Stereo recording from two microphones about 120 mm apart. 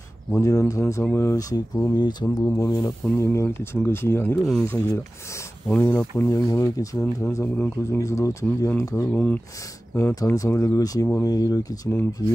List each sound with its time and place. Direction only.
0.3 s speech: 25° left (ahead or behind)
2.2 s speech: 15° left (ahead or behind)
2.7 s speech: 25° left (ahead or behind)
6.5 s speech: 25° left (ahead or behind)
7.2 s speech: 15° left (ahead or behind)
9.1 s speech: 10° left (ahead or behind)
10.2 s speech: 25° left (ahead or behind)